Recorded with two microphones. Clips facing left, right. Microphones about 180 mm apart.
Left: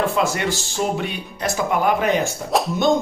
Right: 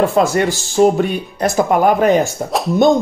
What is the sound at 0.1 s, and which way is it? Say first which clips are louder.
Speech: right 7 dB; 40° right (ahead or behind).